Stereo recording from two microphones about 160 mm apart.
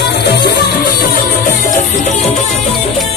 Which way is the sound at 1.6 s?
55° left (ahead or behind).